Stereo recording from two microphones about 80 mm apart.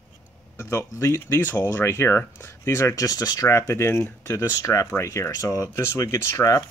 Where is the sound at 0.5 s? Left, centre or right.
Left.